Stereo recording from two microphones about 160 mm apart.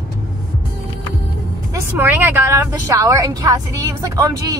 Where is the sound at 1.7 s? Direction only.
15° right (ahead or behind).